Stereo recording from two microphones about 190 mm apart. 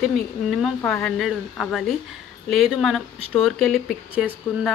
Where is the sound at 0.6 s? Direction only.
5° left (ahead or behind).